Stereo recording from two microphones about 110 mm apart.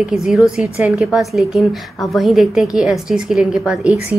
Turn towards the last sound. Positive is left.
turn(degrees=-5)  # may be behind; listen again after turning